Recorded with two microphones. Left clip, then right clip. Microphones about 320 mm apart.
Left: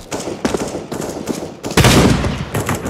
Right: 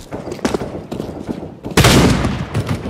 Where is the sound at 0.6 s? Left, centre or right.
Left.